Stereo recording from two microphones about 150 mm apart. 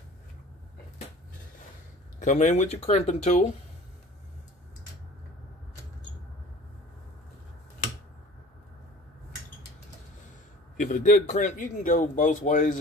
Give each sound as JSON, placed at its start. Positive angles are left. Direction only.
{"t": 2.1, "sound": "speech", "side_deg": 55}
{"t": 10.8, "sound": "speech", "side_deg": 60}